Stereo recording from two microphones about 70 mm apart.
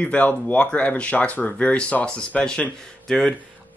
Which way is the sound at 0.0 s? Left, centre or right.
Centre.